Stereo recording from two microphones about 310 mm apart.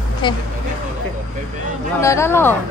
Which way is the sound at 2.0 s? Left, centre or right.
Centre.